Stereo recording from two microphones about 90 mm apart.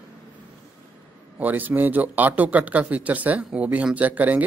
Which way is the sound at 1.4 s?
20° right (ahead or behind).